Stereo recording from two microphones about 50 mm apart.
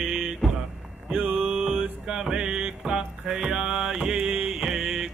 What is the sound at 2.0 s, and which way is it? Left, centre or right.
Music, centre.